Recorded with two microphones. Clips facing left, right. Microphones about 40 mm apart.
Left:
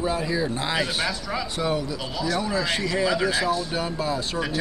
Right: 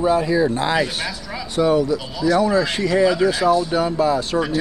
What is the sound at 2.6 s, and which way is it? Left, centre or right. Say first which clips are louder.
Speech: right 4 dB; right.